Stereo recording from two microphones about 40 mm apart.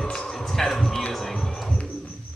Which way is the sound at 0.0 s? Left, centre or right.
Centre.